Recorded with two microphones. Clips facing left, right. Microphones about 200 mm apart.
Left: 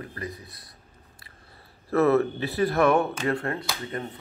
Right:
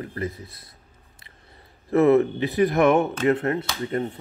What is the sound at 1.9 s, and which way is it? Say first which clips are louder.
Speech: right 4 dB; 20° right (ahead or behind).